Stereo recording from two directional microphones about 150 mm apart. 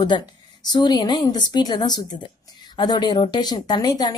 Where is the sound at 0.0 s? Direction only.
30° left (ahead or behind).